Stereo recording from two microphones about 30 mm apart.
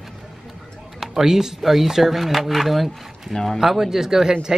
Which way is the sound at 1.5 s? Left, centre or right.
Centre.